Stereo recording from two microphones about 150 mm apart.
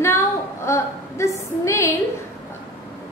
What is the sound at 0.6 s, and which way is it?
A woman's voice, 20° left (ahead or behind).